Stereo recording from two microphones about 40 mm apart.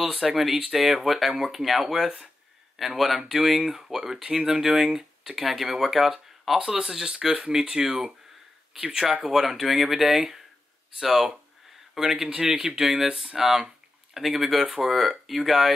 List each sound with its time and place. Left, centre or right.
0.0 s speech: centre
9.2 s speech: centre
12.3 s speech: right